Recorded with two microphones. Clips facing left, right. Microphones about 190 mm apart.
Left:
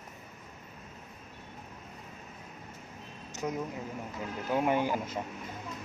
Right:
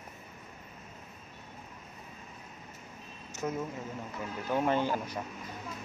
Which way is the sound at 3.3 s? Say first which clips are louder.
Even; 15° left (ahead or behind).